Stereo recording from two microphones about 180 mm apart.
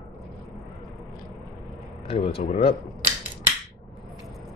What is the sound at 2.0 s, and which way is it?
Speech, 30° left (ahead or behind).